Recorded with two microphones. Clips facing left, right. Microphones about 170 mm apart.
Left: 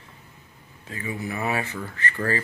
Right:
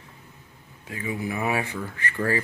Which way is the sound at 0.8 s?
10° right (ahead or behind).